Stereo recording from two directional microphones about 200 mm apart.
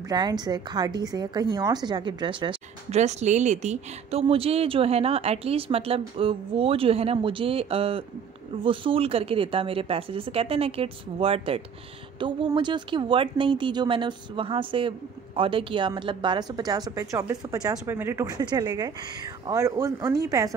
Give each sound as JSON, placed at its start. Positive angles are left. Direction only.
{"t": 0.1, "sound": "a woman's voice", "side_deg": -20}